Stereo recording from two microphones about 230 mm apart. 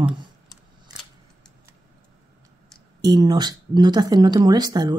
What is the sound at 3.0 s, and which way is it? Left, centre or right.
Speech, centre.